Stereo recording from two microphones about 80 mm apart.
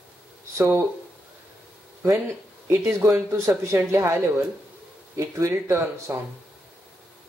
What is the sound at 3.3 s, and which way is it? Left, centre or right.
Speech, right.